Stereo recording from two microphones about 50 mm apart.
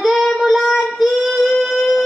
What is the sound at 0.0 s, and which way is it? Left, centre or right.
Child singing, centre.